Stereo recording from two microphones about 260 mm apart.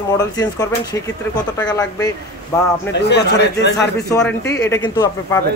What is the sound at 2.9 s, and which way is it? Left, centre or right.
A man's voice, left.